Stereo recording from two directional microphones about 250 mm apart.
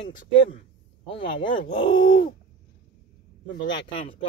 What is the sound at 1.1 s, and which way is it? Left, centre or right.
Speech, centre.